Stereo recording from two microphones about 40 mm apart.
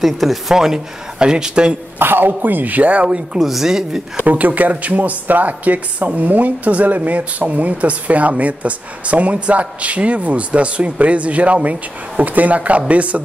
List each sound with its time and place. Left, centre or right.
0.0 s speech: centre
1.2 s speech: right
2.0 s speech: right
3.3 s speech: centre
4.3 s speech: right